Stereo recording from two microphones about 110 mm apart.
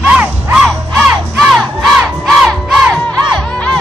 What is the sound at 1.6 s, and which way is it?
Crowd, 5° left (ahead or behind).